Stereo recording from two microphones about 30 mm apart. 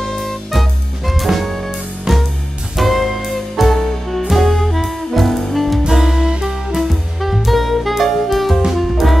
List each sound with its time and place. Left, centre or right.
0.0 s music: centre
2.1 s music: centre
2.8 s music: centre
5.9 s music: centre
6.8 s music: centre
8.6 s music: centre